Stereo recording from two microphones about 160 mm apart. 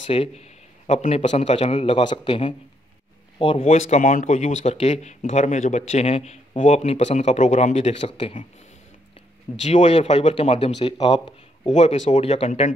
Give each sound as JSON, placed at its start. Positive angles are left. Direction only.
{"t": 0.0, "sound": "a man's voice", "side_deg": 40}
{"t": 9.6, "sound": "a man's voice", "side_deg": 45}
{"t": 11.7, "sound": "speech", "side_deg": 45}